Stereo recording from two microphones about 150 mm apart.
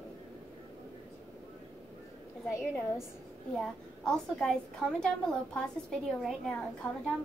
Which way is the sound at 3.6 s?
Centre (ahead or behind).